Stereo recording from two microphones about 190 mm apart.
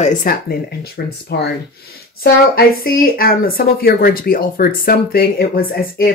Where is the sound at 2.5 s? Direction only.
50° left (ahead or behind).